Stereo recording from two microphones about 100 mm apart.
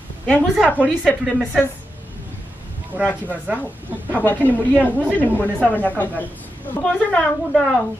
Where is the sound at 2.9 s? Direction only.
20° right (ahead or behind).